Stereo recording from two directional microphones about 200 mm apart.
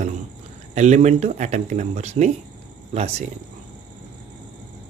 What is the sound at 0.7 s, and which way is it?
Speech, 35° right (ahead or behind).